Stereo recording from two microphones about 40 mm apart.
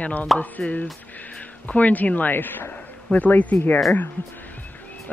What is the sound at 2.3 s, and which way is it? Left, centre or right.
Speech, left.